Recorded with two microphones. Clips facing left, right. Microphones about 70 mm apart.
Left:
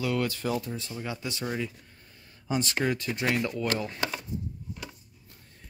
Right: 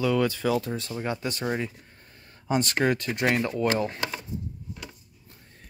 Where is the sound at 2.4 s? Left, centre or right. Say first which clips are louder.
Right 4 dB; right.